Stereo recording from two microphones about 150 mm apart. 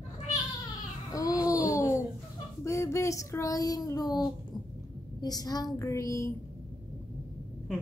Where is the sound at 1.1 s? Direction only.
25° left (ahead or behind).